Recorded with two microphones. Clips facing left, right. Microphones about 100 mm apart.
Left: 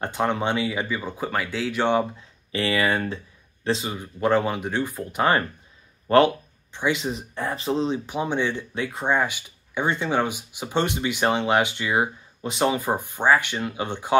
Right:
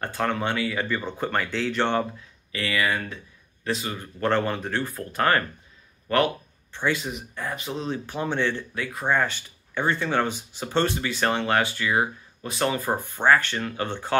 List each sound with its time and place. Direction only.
0.0 s speech: 20° left (ahead or behind)
2.5 s speech: 30° left (ahead or behind)
3.9 s speech: 10° left (ahead or behind)
6.0 s speech: 30° left (ahead or behind)
6.7 s speech: 20° left (ahead or behind)
7.9 s speech: 15° left (ahead or behind)